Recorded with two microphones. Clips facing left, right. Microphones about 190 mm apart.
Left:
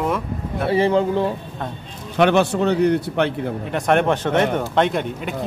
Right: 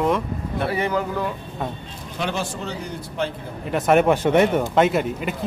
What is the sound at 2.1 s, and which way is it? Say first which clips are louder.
A man's voice: left 11 dB; 65° left (ahead or behind).